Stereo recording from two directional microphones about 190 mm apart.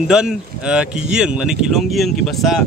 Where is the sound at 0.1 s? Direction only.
5° right (ahead or behind).